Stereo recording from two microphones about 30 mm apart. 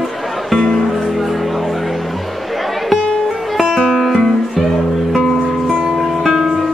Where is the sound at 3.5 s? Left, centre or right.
Centre.